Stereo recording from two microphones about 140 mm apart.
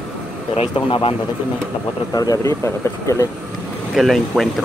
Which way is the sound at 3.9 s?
Centre (ahead or behind).